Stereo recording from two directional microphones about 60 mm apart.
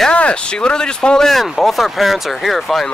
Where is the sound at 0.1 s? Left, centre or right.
Centre.